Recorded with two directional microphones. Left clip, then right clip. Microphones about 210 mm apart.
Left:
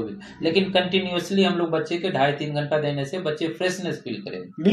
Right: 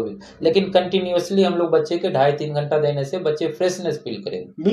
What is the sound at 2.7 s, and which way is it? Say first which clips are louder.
Speech: right 5 dB; 20° right (ahead or behind).